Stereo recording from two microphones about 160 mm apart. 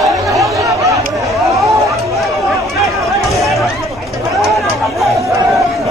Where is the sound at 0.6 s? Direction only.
20° right (ahead or behind).